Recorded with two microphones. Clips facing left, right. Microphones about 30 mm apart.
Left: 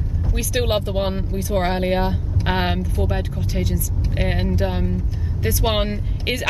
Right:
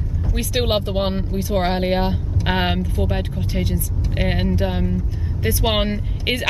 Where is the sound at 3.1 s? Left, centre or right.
Right.